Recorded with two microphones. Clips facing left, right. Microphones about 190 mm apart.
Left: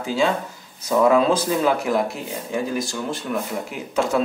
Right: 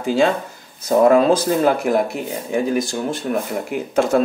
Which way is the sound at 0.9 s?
45° right (ahead or behind).